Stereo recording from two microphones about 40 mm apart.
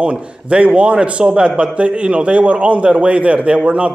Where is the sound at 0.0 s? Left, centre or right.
Right.